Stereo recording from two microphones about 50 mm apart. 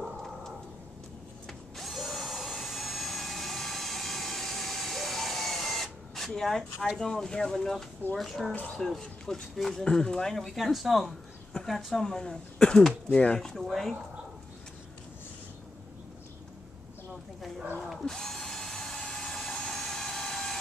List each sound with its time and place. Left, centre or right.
1.8 s drill: centre
7.0 s speech: centre
13.6 s speech: centre
17.7 s drill: centre